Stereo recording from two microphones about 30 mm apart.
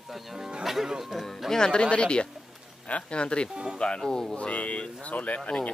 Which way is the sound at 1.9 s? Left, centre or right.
Left.